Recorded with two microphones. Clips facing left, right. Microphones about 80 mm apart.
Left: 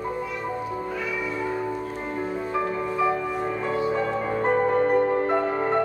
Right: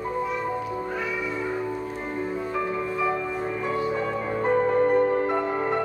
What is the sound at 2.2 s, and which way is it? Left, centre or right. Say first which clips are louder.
Music: left 1 dB; centre.